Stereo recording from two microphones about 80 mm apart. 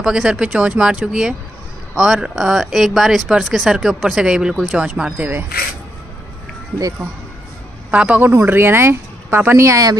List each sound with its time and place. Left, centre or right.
0.0 s speech: centre
5.1 s speech: right
7.9 s a man's voice: centre
8.2 s speech: right